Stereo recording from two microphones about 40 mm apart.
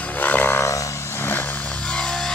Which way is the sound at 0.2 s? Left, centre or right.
Left.